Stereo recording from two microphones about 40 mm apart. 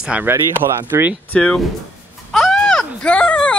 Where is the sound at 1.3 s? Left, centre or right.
Left.